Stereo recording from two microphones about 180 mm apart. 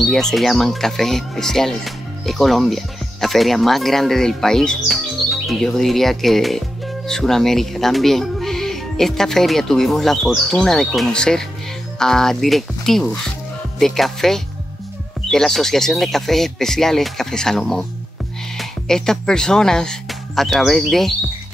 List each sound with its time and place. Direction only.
0.1 s speech: centre (ahead or behind)